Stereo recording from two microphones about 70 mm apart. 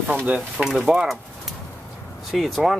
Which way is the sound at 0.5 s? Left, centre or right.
Centre.